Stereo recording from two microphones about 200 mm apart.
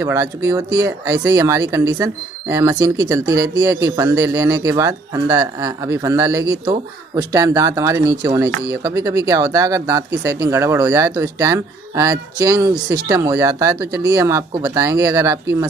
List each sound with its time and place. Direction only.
0.0 s speech: 15° right (ahead or behind)